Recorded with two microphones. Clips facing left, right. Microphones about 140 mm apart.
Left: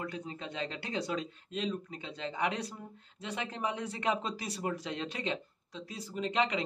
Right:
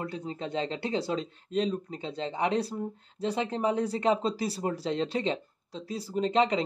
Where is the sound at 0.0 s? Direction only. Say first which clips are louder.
Right 5 dB; 30° right (ahead or behind).